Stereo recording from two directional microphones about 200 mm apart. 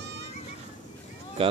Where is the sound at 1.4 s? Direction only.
25° right (ahead or behind).